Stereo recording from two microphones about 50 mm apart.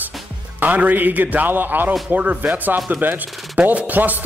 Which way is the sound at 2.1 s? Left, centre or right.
Right.